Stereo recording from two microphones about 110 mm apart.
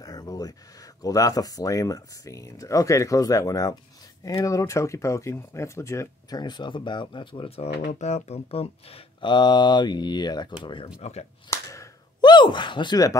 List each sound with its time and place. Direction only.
0.0 s a sound: 35° left (ahead or behind)
1.0 s speech: 30° left (ahead or behind)
6.4 s speech: 40° left (ahead or behind); by 9.3 s 60° left (ahead or behind)
9.3 s speech: 40° left (ahead or behind)
11.0 s speech: 75° left (ahead or behind)
11.5 s a sound: 30° left (ahead or behind)
12.2 s speech: 45° left (ahead or behind)